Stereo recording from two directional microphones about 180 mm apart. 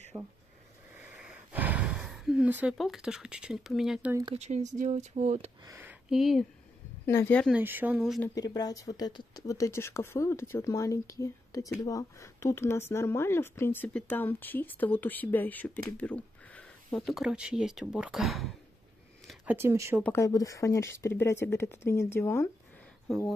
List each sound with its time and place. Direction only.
0.1 s speech: 15° right (ahead or behind)
0.9 s a sound: 10° right (ahead or behind)
4.1 s speech: 20° right (ahead or behind)
4.4 s speech: 40° right (ahead or behind)
5.7 s speech: 10° right (ahead or behind)
7.1 s speech: 10° left (ahead or behind)
7.5 s speech: 10° right (ahead or behind)
8.0 s speech: centre (ahead or behind)
8.4 s speech: 20° left (ahead or behind); by 20.0 s 15° right (ahead or behind)
20.0 s speech: 15° left (ahead or behind)
23.0 s speech: centre (ahead or behind)